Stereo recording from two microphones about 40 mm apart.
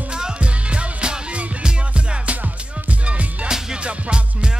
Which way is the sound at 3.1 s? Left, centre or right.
Right.